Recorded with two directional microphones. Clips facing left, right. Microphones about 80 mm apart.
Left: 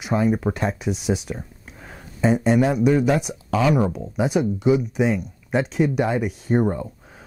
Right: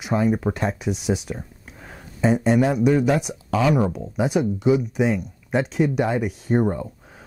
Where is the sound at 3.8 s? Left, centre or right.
Centre.